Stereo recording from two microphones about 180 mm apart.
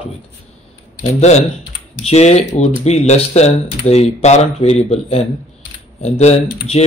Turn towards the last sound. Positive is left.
turn(degrees=35)  # may be behind; listen again after turning